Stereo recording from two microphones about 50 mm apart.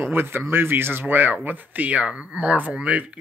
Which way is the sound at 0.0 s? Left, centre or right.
Right.